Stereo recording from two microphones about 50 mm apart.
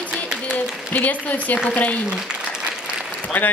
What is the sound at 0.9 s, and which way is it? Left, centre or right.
Speech, left.